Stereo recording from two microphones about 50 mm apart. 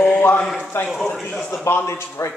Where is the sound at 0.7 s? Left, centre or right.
Left.